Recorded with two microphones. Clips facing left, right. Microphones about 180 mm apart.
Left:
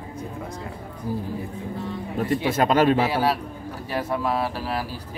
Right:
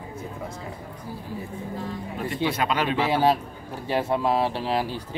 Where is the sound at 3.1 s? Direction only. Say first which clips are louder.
Right 2 dB; 25° right (ahead or behind).